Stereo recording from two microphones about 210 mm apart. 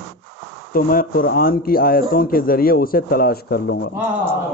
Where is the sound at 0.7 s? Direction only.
45° left (ahead or behind).